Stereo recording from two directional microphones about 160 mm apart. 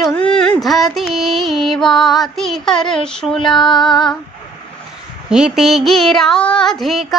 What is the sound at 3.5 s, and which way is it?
Female singing, 30° left (ahead or behind).